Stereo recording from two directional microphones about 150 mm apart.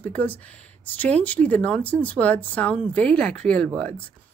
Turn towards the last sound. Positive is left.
turn(degrees=10)  # may be behind; listen again after turning